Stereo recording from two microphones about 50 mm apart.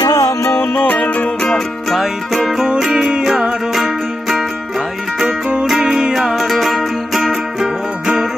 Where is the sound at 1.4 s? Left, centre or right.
Centre.